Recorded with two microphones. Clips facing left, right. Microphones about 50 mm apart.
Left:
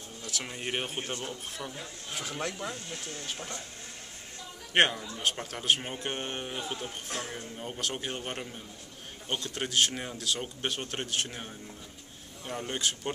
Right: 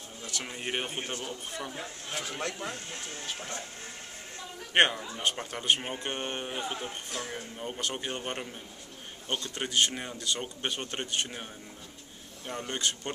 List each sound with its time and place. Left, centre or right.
0.3 s speech: centre
1.7 s speech: centre
2.1 s speech: centre
2.7 s speech: right
4.7 s speech: centre
7.1 s speech: left
7.5 s speech: centre
12.4 s speech: centre